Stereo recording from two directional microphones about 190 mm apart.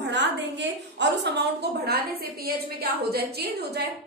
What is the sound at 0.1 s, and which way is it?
A woman's voice, 65° right (ahead or behind).